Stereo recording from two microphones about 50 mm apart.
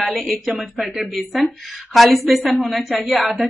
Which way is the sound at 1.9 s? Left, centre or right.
Centre.